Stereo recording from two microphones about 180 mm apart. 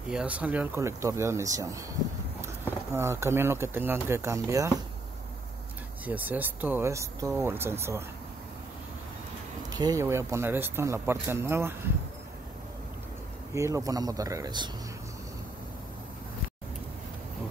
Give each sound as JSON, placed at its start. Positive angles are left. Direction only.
{"t": 0.1, "sound": "speech", "side_deg": -5}
{"t": 6.0, "sound": "speech", "side_deg": -10}
{"t": 9.7, "sound": "speech", "side_deg": -20}
{"t": 13.5, "sound": "speech", "side_deg": -15}